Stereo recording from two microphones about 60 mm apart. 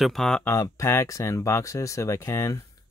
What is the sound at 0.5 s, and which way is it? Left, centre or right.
Speech, left.